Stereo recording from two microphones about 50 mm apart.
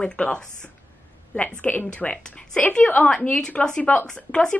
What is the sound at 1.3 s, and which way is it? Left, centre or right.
A woman's voice, left.